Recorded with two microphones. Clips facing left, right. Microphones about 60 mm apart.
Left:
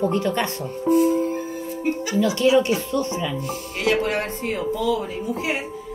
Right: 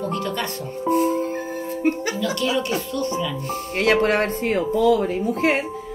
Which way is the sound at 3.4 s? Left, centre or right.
Right.